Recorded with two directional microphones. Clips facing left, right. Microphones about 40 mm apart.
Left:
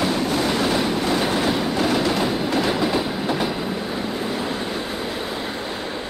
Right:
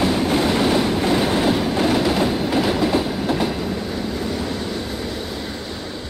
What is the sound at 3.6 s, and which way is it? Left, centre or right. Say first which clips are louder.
Train: right 1 dB; left.